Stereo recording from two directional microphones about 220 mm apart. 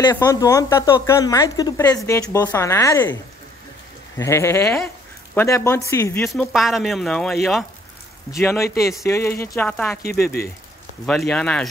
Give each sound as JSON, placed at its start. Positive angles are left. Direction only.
{"t": 0.0, "sound": "speech", "side_deg": 15}
{"t": 4.2, "sound": "speech", "side_deg": 10}
{"t": 6.2, "sound": "speech", "side_deg": 0}
{"t": 8.3, "sound": "speech", "side_deg": 15}
{"t": 10.0, "sound": "speech", "side_deg": 45}
{"t": 11.1, "sound": "speech", "side_deg": 5}